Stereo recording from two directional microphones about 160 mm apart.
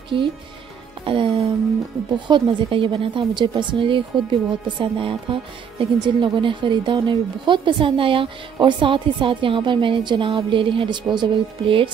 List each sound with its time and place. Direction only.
1.0 s a woman's voice: 35° right (ahead or behind)